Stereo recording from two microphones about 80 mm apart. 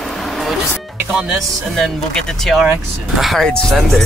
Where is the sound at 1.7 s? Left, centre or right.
Centre.